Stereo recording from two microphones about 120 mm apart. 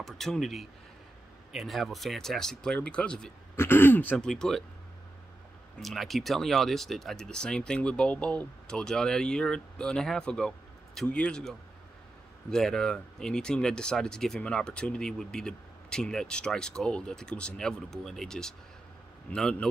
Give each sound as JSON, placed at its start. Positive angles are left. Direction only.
{"t": 0.0, "sound": "speech", "side_deg": 0}
{"t": 3.5, "sound": "a man's voice", "side_deg": 20}
{"t": 4.3, "sound": "speech", "side_deg": 5}
{"t": 5.8, "sound": "a man's voice", "side_deg": 0}